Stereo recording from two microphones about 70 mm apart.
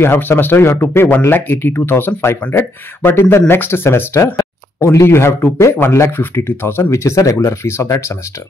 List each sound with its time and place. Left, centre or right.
0.0 s speech: left
7.3 s speech: left